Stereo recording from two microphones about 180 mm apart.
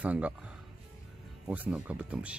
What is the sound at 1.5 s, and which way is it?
Speech, 10° right (ahead or behind).